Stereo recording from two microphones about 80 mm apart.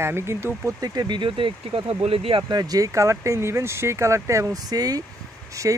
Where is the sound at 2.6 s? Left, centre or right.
Right.